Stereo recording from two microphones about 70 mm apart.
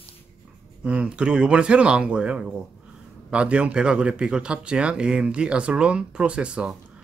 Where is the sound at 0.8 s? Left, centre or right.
Centre.